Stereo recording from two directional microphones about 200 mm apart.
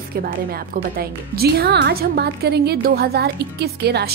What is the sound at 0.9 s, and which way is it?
Speech, 50° right (ahead or behind).